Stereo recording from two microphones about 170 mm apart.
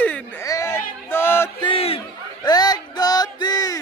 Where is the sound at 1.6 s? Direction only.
35° left (ahead or behind).